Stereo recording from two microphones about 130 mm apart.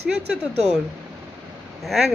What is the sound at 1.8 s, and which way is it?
Speech, centre (ahead or behind).